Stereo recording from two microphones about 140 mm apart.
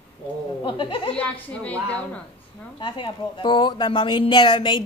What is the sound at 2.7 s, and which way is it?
A woman's voice, 35° left (ahead or behind).